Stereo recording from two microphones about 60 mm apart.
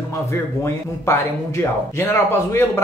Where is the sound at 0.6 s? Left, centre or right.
Left.